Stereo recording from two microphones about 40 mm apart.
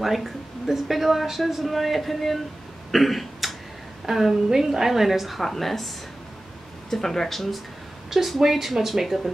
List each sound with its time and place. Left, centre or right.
0.0 s a woman's voice: centre
2.9 s cough: centre
4.0 s a woman's voice: centre
6.9 s speech: centre
8.1 s a woman's voice: centre